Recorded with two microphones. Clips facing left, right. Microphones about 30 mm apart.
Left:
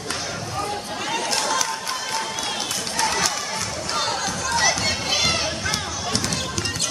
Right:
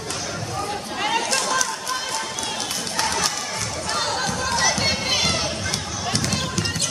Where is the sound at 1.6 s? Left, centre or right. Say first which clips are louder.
Right 1 dB; centre.